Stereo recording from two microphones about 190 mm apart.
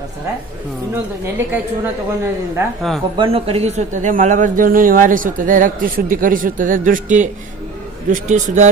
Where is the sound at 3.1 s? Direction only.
30° right (ahead or behind).